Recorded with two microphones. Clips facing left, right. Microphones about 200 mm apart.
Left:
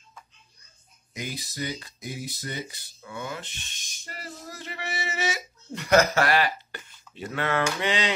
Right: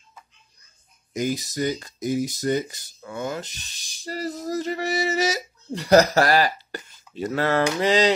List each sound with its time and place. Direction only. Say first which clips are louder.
1.1 s speech: right 10 dB; 45° right (ahead or behind)